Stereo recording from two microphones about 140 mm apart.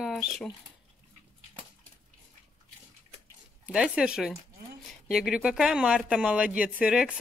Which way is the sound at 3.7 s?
5° right (ahead or behind).